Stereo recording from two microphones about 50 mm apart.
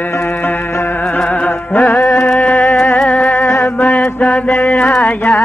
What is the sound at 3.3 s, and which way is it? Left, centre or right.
Music, left.